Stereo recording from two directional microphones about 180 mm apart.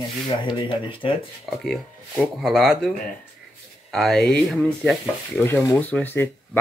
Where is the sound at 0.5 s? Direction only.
30° left (ahead or behind).